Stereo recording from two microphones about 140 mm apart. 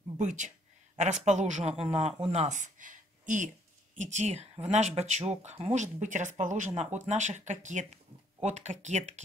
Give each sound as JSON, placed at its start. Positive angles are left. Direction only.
{"t": 0.2, "sound": "speech", "side_deg": -60}